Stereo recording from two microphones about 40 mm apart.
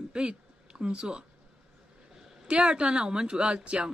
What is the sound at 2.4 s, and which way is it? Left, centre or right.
A woman's voice, right.